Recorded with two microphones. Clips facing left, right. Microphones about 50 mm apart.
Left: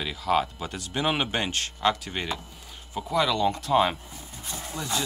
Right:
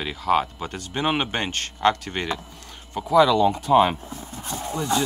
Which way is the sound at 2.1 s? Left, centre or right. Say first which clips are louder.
Right 4 dB; centre.